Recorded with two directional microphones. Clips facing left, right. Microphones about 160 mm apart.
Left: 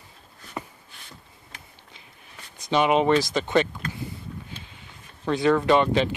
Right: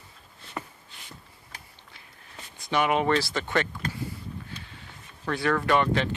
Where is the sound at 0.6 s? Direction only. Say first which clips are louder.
Left 2 dB; 15° left (ahead or behind).